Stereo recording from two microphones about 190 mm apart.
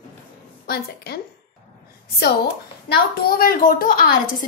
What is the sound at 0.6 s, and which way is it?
Speech, 55° left (ahead or behind).